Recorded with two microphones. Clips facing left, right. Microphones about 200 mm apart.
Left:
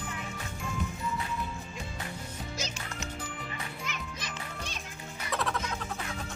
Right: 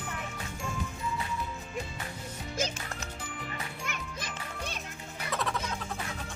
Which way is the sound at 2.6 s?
50° right (ahead or behind).